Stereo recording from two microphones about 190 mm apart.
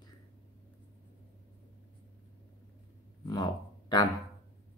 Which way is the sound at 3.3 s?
20° left (ahead or behind).